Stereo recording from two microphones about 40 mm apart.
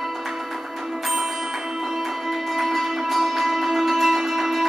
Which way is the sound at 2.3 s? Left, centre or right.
Centre.